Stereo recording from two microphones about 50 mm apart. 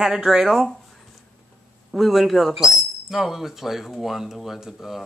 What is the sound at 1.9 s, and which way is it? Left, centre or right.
Speech, centre.